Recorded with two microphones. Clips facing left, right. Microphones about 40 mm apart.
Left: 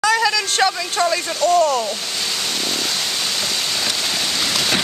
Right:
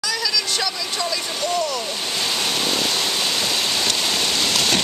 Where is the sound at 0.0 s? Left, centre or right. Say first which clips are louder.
Left 7 dB; left.